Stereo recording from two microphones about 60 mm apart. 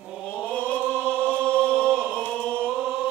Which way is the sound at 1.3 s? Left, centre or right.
Right.